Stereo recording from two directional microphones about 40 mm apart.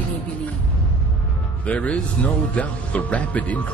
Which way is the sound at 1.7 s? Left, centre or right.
Left.